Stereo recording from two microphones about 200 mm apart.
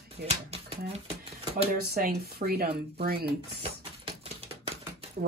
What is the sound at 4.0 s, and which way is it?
Typewriter, 30° right (ahead or behind).